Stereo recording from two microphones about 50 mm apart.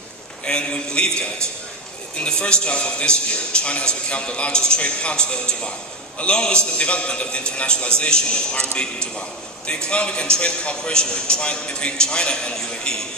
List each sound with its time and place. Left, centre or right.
0.5 s a man's voice: centre